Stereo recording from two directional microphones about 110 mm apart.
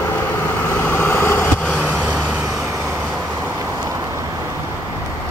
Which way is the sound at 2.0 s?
15° right (ahead or behind).